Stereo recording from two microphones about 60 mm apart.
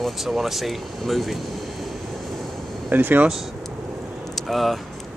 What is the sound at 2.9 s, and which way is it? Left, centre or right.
Speech, right.